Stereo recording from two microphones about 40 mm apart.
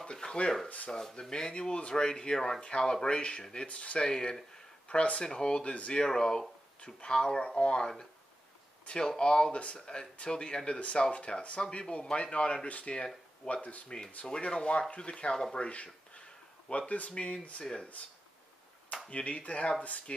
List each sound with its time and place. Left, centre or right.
0.0 s speech: left
0.7 s speech: left
1.3 s speech: left
4.0 s speech: centre
4.8 s speech: left
6.0 s speech: centre
8.9 s speech: centre
13.6 s speech: left
14.2 s speech: left
19.0 s speech: left